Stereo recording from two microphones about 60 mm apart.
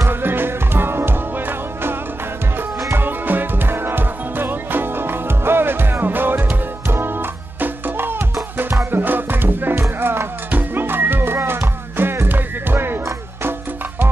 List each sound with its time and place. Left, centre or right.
0.1 s music: right
2.9 s music: right